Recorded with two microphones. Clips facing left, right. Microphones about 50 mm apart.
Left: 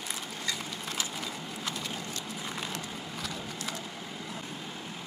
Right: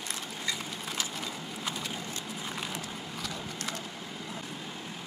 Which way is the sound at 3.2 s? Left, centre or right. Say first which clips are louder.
Even; centre.